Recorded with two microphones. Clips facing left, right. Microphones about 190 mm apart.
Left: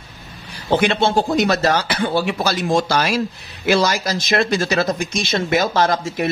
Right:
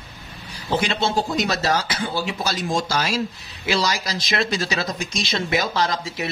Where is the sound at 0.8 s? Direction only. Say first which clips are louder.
Left 6 dB; 55° left (ahead or behind).